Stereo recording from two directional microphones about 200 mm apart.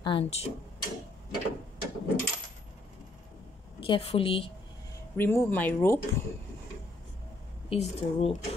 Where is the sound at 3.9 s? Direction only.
30° left (ahead or behind).